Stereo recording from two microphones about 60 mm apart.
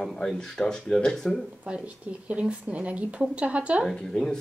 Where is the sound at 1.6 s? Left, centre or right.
Centre.